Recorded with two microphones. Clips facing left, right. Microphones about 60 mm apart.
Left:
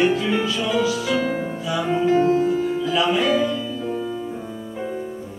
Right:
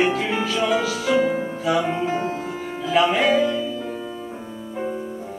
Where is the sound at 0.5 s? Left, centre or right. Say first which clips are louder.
Even; right; by 4.1 s centre.